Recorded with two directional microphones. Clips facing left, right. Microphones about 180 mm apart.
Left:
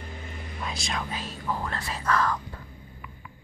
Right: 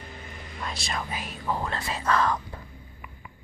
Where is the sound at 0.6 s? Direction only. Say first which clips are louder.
Even; centre (ahead or behind).